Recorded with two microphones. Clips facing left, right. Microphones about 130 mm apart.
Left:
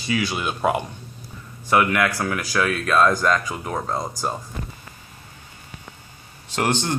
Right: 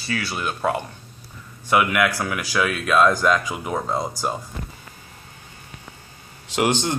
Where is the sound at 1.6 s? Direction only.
5° right (ahead or behind).